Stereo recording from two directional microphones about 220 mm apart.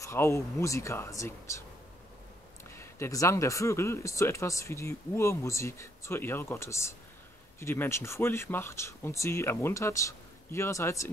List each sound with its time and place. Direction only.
0.0 s speech: 15° left (ahead or behind)
2.7 s speech: 10° left (ahead or behind)